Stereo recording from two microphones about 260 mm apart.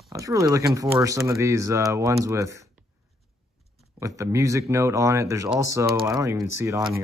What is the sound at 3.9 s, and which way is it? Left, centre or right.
Speech, centre.